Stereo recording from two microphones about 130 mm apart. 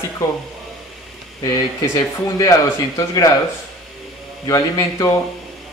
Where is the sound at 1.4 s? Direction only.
25° left (ahead or behind).